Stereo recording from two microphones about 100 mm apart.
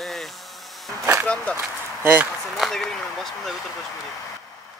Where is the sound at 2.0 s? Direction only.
20° right (ahead or behind).